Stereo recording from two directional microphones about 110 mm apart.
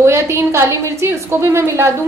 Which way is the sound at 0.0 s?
25° right (ahead or behind).